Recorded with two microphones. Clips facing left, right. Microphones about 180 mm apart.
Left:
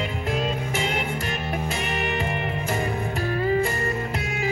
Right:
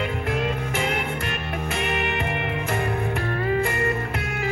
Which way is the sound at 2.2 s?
20° left (ahead or behind).